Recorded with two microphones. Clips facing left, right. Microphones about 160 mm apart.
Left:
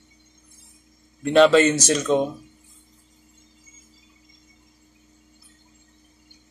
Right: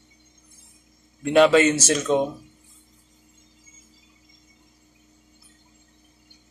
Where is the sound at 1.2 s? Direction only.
5° right (ahead or behind).